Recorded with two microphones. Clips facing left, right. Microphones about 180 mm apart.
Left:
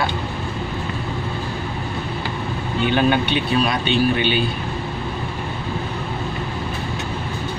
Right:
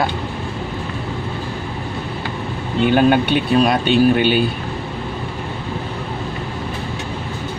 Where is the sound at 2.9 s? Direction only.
45° right (ahead or behind).